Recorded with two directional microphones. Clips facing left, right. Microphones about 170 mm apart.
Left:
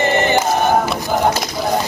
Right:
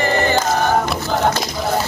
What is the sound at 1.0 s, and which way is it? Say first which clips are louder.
Speech: left 1 dB; 15° left (ahead or behind).